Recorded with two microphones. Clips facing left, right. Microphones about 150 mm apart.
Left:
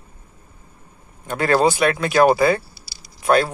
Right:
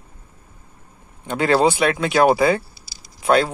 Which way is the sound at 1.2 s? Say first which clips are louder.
Even; 10° right (ahead or behind).